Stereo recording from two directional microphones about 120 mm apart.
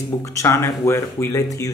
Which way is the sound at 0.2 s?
25° left (ahead or behind).